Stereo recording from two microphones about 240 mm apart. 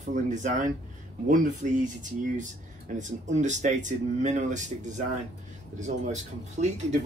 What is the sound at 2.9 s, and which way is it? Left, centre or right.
Speech, right.